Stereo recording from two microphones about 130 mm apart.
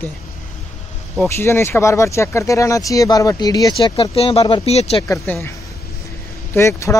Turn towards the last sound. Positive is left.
turn(degrees=20)  # may be behind; listen again after turning